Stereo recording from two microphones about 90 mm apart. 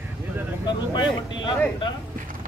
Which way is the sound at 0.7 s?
60° left (ahead or behind).